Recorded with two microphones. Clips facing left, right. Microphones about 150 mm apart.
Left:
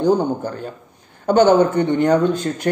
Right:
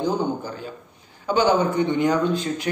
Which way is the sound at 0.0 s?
55° left (ahead or behind).